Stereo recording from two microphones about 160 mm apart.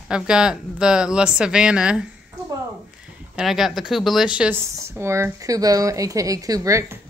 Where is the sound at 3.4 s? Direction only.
Centre (ahead or behind).